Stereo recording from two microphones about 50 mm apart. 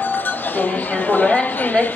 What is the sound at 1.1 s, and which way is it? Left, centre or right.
Chatter, left.